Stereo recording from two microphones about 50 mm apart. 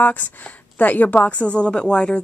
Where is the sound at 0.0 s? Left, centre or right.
Left.